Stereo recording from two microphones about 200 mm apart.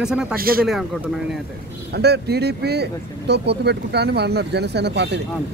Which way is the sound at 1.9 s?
55° right (ahead or behind).